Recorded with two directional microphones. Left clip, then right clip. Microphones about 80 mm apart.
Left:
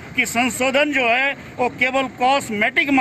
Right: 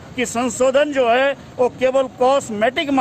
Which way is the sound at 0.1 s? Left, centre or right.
Right.